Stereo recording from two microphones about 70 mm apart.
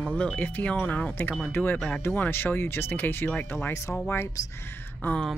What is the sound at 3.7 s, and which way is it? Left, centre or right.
Speech, left.